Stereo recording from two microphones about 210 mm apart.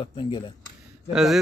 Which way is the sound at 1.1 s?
Centre (ahead or behind).